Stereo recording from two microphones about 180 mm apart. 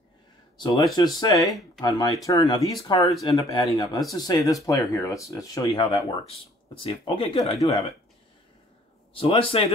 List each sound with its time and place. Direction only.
0.9 s speech: 20° left (ahead or behind)
9.1 s speech: 30° left (ahead or behind)